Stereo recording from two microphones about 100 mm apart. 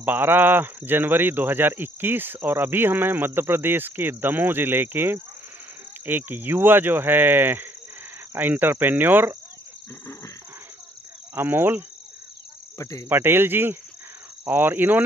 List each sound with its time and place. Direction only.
0.0 s speech: 20° right (ahead or behind)
11.3 s speech: 20° right (ahead or behind)
12.7 s cricket: 35° left (ahead or behind)
13.1 s speech: 20° right (ahead or behind)